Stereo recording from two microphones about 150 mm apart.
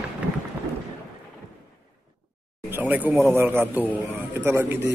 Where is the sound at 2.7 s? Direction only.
10° right (ahead or behind).